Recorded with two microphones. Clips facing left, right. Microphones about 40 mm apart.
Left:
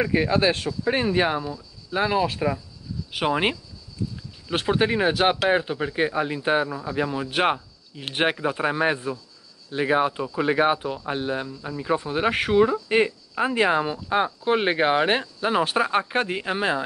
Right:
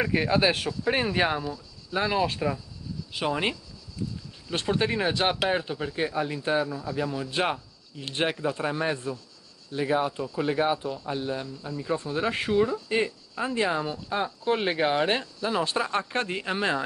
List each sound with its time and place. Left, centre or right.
0.0 s speech: centre
3.2 s speech: left; by 16.8 s centre